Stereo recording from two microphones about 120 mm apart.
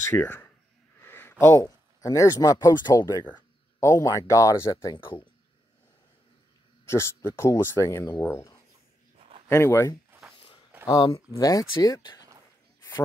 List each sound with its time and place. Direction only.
0.1 s speech: 15° left (ahead or behind)
1.0 s a sound: 15° left (ahead or behind)
1.4 s speech: 25° left (ahead or behind)
6.9 s speech: 20° left (ahead or behind)
11.1 s speech: 30° left (ahead or behind)